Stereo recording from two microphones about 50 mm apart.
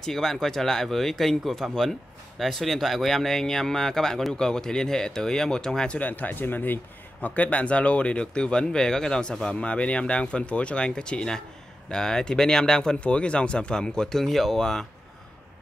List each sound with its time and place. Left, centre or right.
0.0 s speech: centre
5.9 s a man's voice: left; by 14.9 s centre